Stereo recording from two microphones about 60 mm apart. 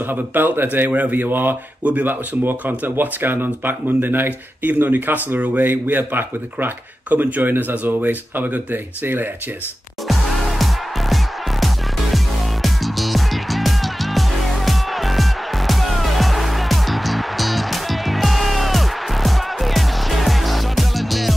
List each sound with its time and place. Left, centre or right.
0.1 s speech: right
1.8 s speech: right
10.0 s music: centre
12.6 s music: centre